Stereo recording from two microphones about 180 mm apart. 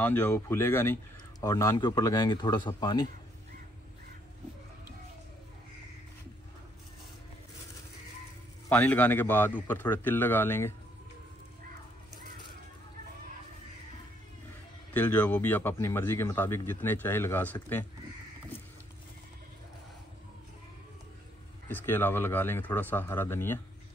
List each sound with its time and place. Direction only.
0.0 s speech: 10° left (ahead or behind)
8.6 s speech: 10° left (ahead or behind)
15.0 s speech: 10° left (ahead or behind)
21.6 s speech: 10° left (ahead or behind)